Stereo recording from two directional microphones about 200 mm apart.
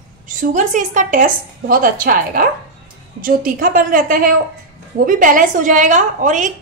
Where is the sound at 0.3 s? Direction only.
40° right (ahead or behind).